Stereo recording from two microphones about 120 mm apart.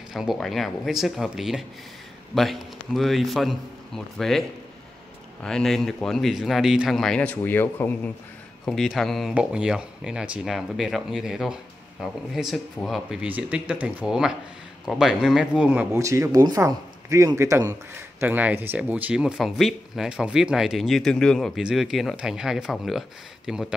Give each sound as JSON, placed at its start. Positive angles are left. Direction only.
{"t": 0.1, "sound": "speech", "side_deg": 0}
{"t": 8.6, "sound": "speech", "side_deg": 0}
{"t": 15.9, "sound": "speech", "side_deg": -25}